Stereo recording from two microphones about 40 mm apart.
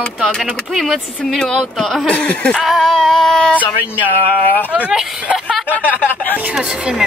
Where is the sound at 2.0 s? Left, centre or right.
Left.